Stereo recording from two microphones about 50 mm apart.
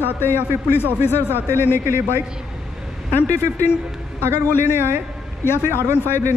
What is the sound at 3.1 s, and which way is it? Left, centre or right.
Speech, left.